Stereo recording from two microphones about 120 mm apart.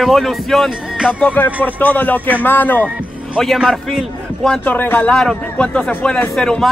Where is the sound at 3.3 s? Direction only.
Centre (ahead or behind).